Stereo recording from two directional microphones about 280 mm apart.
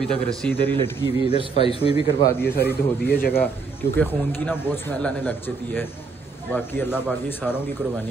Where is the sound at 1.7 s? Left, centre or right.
Centre.